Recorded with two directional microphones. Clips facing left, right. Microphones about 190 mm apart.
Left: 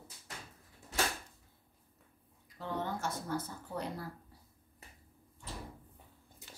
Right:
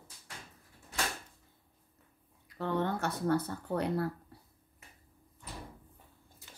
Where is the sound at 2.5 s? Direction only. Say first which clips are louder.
Right 6 dB; 65° right (ahead or behind).